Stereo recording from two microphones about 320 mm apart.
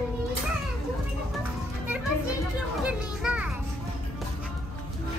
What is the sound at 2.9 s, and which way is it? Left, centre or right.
Children playing, centre.